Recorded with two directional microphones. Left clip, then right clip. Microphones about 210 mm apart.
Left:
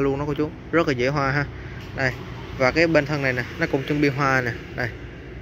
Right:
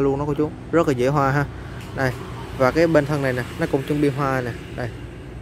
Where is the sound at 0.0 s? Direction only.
15° right (ahead or behind).